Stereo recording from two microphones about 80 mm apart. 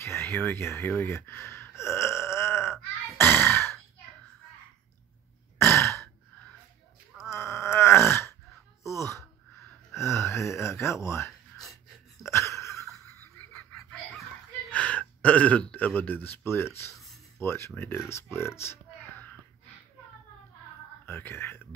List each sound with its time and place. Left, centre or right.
0.0 s speech: left
1.0 s a sound: left
5.6 s throat clearing: left
7.2 s grunt: left
8.8 s a sound: left
9.9 s gasp: left
12.3 s a sound: left
14.7 s speech: centre; by 19.2 s left
21.0 s speech: left